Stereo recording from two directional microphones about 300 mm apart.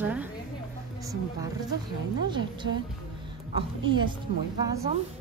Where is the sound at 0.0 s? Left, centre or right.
Centre.